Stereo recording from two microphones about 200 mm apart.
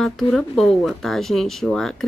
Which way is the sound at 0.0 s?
Centre (ahead or behind).